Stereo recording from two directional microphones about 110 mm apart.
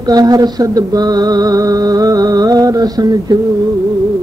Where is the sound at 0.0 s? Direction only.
35° right (ahead or behind).